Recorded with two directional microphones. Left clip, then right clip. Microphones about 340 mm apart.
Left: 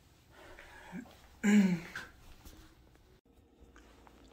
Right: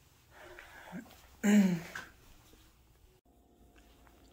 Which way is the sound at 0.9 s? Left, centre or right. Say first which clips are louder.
Even; centre.